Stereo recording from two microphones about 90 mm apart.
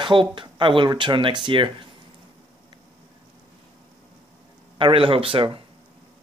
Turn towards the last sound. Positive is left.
turn(degrees=-80)